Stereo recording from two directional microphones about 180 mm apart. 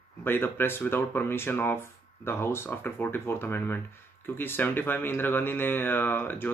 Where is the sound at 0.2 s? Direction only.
10° left (ahead or behind).